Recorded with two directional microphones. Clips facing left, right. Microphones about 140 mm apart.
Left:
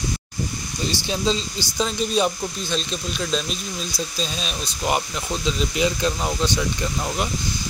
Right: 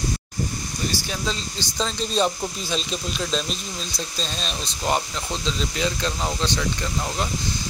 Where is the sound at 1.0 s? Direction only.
25° left (ahead or behind).